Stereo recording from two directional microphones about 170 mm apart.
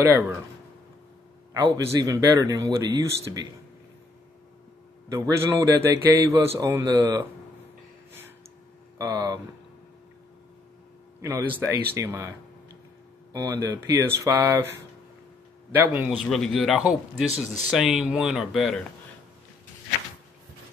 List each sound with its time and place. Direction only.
1.5 s speech: 20° right (ahead or behind)
5.1 s speech: 20° right (ahead or behind)
8.9 s speech: 20° right (ahead or behind)
11.1 s a man's voice: 15° right (ahead or behind)
16.3 s speech: centre (ahead or behind)